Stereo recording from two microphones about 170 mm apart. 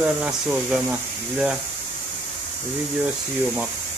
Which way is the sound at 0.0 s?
5° right (ahead or behind).